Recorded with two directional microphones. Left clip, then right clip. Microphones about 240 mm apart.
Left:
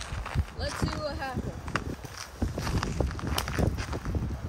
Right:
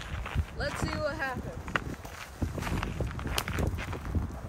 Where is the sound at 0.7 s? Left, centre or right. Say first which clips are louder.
Left 1 dB; centre.